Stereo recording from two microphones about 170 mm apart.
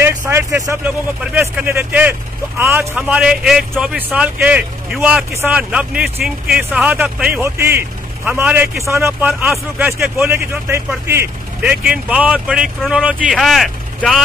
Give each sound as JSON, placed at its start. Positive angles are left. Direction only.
{"t": 0.0, "sound": "speech", "side_deg": -15}